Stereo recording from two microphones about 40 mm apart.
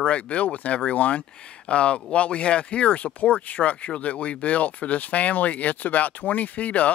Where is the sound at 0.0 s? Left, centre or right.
Left.